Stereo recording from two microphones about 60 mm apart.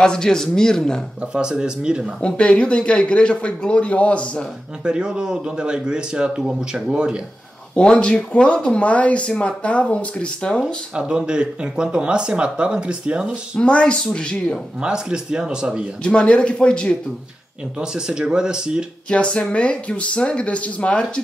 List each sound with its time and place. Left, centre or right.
0.0 s a man's voice: centre
1.2 s speech: centre
2.2 s a man's voice: centre
4.8 s speech: centre
7.7 s speech: centre
11.0 s speech: centre
13.6 s a man's voice: centre
14.8 s speech: centre
16.0 s a man's voice: centre
17.7 s speech: centre
19.0 s speech: centre